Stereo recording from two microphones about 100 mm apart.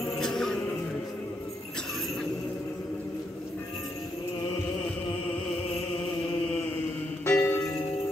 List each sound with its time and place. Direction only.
0.2 s music: 5° left (ahead or behind)
7.2 s music: 20° left (ahead or behind)